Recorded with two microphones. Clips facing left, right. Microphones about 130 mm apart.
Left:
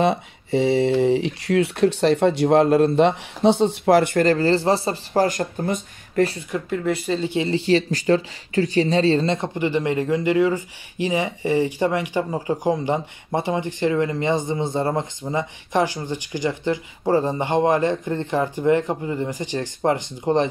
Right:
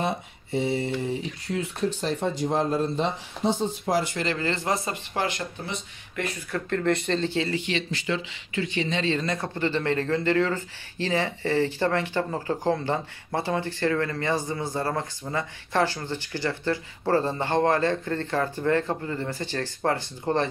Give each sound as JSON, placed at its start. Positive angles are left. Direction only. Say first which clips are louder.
{"t": 0.0, "sound": "speech", "louder": "left 8 dB", "side_deg": 90}
{"t": 6.5, "sound": "speech", "louder": "left 2 dB", "side_deg": 5}
{"t": 7.5, "sound": "speech", "louder": "left 9 dB", "side_deg": 35}
{"t": 9.6, "sound": "speech", "louder": "left 2 dB", "side_deg": 15}